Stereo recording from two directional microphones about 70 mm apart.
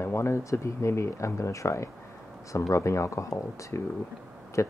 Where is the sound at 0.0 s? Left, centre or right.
Left.